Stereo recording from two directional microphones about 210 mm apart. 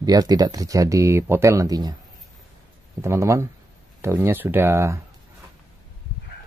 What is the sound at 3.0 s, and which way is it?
Speech, 15° right (ahead or behind).